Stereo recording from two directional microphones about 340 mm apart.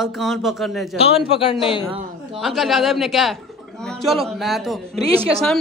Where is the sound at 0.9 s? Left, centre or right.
Centre.